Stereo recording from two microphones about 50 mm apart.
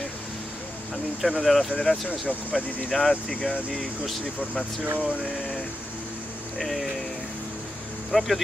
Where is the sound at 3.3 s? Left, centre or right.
Centre.